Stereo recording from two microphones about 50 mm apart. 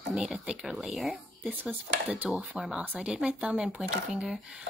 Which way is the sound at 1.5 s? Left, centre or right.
Centre.